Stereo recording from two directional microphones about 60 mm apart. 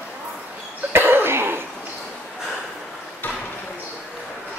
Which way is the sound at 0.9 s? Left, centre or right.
Right.